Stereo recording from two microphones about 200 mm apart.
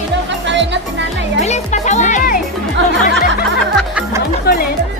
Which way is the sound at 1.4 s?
35° left (ahead or behind).